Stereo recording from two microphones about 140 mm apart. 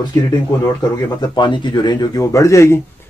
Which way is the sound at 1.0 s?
30° left (ahead or behind).